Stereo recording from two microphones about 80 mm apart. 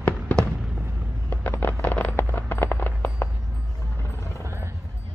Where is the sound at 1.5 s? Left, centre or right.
Left.